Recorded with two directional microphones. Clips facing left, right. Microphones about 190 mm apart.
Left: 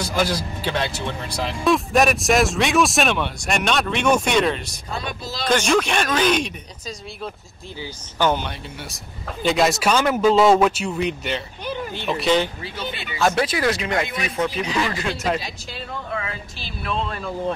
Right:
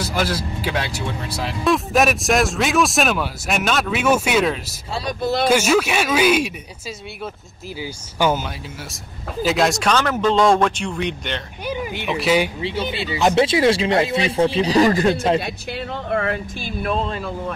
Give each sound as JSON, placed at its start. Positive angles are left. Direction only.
{"t": 0.0, "sound": "speech", "side_deg": -5}
{"t": 7.8, "sound": "speech", "side_deg": -10}
{"t": 11.6, "sound": "speech", "side_deg": -10}
{"t": 12.6, "sound": "speech", "side_deg": -25}
{"t": 15.3, "sound": "speech", "side_deg": -60}